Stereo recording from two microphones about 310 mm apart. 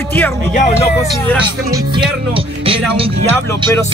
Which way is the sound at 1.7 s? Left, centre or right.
Centre.